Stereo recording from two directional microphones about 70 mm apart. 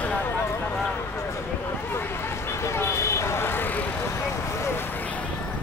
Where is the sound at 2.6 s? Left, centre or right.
Left.